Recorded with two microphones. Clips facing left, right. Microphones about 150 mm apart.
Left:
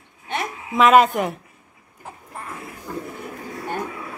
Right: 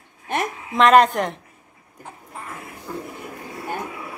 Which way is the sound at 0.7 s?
5° left (ahead or behind).